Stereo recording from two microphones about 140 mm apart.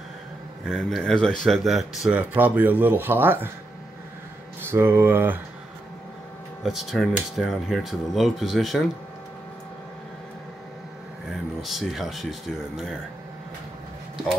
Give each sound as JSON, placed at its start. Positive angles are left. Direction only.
{"t": 0.7, "sound": "speech", "side_deg": 0}
{"t": 2.0, "sound": "speech", "side_deg": -10}
{"t": 4.6, "sound": "speech", "side_deg": -15}
{"t": 6.6, "sound": "speech", "side_deg": 0}
{"t": 11.6, "sound": "speech", "side_deg": 0}